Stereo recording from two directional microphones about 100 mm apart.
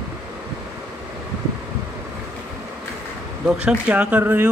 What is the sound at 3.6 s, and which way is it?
Speech, 10° right (ahead or behind).